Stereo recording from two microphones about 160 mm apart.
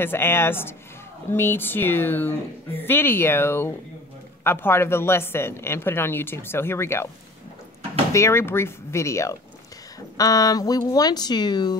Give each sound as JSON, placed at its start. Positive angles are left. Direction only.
{"t": 0.0, "sound": "speech", "side_deg": 15}
{"t": 8.1, "sound": "speech", "side_deg": 15}